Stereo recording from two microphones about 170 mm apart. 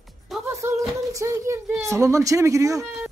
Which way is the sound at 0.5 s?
15° right (ahead or behind).